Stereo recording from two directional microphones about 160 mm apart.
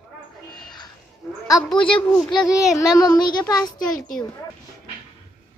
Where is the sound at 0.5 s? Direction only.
25° left (ahead or behind).